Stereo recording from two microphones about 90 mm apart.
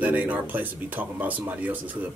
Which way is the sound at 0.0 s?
20° right (ahead or behind).